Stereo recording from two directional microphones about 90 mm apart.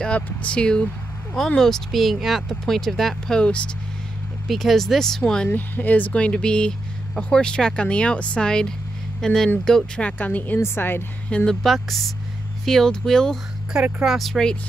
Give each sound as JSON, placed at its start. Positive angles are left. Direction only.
{"t": 0.0, "sound": "speech", "side_deg": 15}
{"t": 4.5, "sound": "a woman's voice", "side_deg": 0}
{"t": 11.3, "sound": "speech", "side_deg": 5}